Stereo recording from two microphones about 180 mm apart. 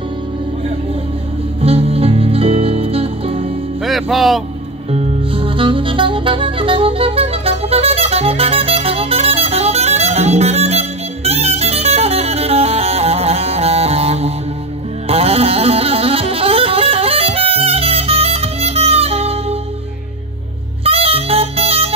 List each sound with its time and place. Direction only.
1.6 s music: 35° right (ahead or behind)
3.8 s music: centre (ahead or behind)
4.9 s music: 35° right (ahead or behind)
20.8 s music: 30° right (ahead or behind)